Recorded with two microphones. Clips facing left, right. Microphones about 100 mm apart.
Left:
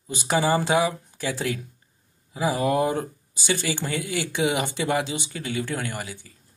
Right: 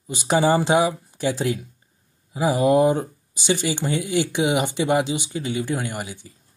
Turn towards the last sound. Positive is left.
turn(degrees=-20)  # may be behind; listen again after turning